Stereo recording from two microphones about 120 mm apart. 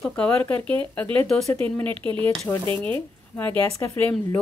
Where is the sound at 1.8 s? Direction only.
45° right (ahead or behind).